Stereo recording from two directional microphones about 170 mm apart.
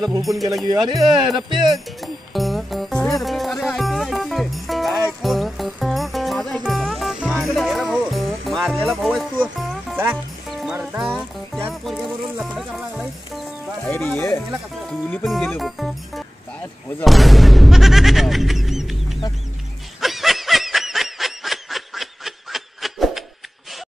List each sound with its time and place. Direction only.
0.2 s speech: centre (ahead or behind)
0.7 s speech: 25° right (ahead or behind)
2.0 s music: centre (ahead or behind)
11.1 s speech: 5° left (ahead or behind)
13.8 s speech: 10° left (ahead or behind)
15.2 s speech: centre (ahead or behind)
15.6 s music: centre (ahead or behind)
17.0 s speech: centre (ahead or behind)
20.0 s snicker: centre (ahead or behind)